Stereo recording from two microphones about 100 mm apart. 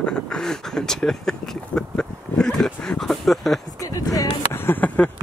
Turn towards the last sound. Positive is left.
turn(degrees=15)  # may be behind; listen again after turning